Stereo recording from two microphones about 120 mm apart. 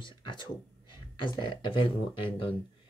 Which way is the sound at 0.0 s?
45° left (ahead or behind).